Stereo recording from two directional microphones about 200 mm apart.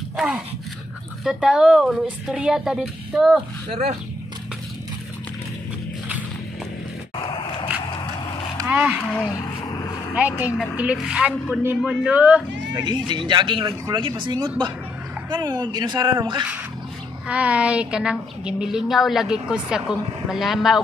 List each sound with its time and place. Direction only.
0.1 s a sound: 5° right (ahead or behind)
1.2 s a woman's voice: centre (ahead or behind)
8.5 s a sound: 10° right (ahead or behind)
10.1 s a woman's voice: 10° right (ahead or behind)
12.7 s speech: 20° right (ahead or behind)
17.3 s a woman's voice: 5° right (ahead or behind)